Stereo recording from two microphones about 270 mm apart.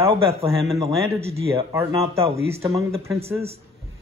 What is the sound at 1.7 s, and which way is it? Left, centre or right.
A man's voice, centre.